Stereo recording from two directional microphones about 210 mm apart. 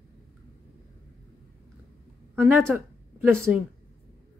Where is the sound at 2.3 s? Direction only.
10° right (ahead or behind).